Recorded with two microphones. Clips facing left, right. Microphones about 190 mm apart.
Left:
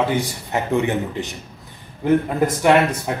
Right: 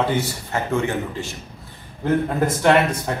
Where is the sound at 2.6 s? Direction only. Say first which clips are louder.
Left 1 dB; 10° left (ahead or behind).